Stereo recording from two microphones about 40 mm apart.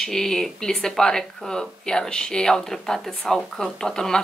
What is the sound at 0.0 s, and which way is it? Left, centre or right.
A woman's voice, centre.